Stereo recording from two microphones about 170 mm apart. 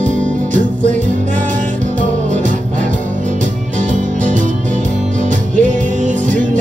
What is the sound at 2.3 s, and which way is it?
Music, 50° right (ahead or behind).